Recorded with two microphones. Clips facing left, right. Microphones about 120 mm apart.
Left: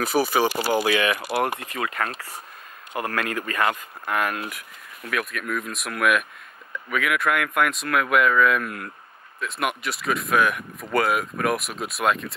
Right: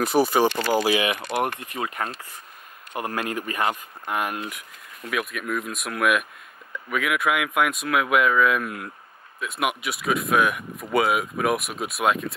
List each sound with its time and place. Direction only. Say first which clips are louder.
0.0 s speech: right 2 dB; 5° left (ahead or behind)
1.4 s speech: left 1 dB; 90° left
4.5 s speech: even; centre (ahead or behind)